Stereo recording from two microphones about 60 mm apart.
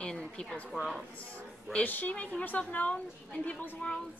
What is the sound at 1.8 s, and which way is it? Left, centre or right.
A woman's voice, left.